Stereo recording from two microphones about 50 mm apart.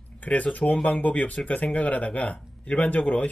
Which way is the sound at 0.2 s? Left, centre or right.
Left.